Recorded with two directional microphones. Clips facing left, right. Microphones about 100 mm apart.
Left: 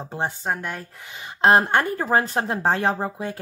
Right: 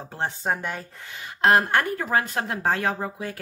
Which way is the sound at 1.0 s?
20° left (ahead or behind).